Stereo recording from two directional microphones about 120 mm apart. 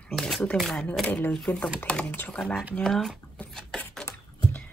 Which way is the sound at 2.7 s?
5° left (ahead or behind).